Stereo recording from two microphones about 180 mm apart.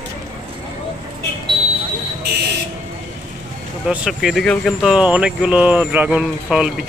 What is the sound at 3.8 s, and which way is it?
Speech, 5° right (ahead or behind).